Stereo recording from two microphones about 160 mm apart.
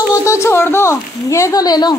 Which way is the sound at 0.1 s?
20° left (ahead or behind).